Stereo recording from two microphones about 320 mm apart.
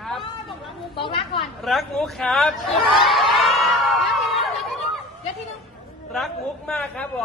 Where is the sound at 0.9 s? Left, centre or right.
Centre.